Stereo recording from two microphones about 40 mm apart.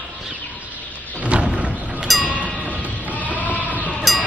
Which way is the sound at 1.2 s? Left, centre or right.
Right.